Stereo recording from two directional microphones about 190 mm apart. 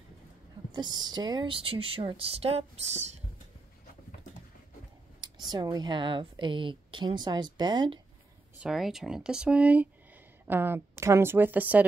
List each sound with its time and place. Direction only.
0.7 s a woman's voice: 25° right (ahead or behind)
5.5 s a woman's voice: 20° right (ahead or behind)
8.5 s a woman's voice: centre (ahead or behind)